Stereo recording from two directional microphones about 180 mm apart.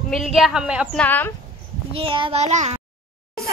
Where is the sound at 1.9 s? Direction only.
30° right (ahead or behind).